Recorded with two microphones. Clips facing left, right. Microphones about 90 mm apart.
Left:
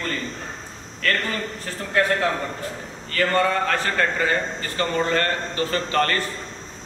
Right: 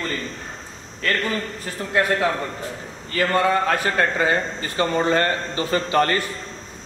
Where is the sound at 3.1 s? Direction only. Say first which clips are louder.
Right 1 dB; 10° right (ahead or behind).